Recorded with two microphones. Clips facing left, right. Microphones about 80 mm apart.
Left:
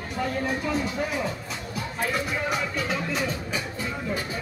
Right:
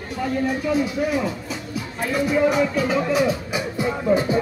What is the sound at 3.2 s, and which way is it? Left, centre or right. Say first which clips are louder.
Music: right 8 dB; centre.